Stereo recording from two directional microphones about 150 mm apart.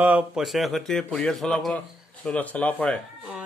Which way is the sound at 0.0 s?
10° right (ahead or behind).